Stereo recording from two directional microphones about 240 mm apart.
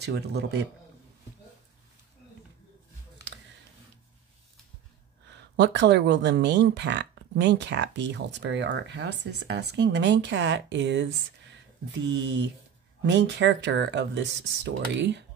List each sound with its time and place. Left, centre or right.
0.0 s speech: right
5.3 s speech: right